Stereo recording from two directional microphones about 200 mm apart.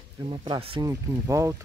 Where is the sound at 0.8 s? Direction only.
15° right (ahead or behind).